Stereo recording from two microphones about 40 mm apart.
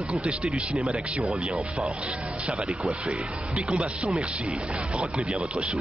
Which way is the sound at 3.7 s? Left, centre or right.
Right.